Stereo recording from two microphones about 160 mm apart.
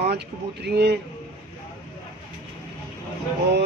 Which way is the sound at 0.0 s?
85° right.